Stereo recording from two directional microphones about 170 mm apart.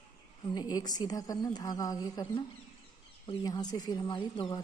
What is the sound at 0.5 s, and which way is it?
A woman's voice, 25° left (ahead or behind).